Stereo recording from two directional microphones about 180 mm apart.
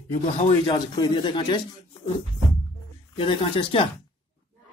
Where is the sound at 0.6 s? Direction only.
25° left (ahead or behind).